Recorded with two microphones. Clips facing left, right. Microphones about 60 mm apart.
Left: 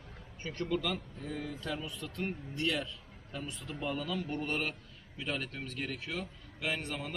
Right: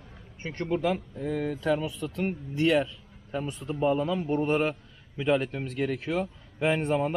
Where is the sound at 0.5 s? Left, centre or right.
Right.